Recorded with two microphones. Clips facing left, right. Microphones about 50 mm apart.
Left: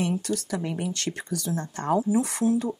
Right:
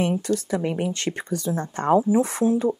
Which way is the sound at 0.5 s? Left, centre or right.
Right.